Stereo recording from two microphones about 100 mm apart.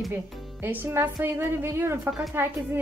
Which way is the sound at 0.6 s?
20° right (ahead or behind).